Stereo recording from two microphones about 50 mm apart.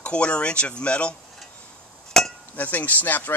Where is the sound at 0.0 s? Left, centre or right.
Left.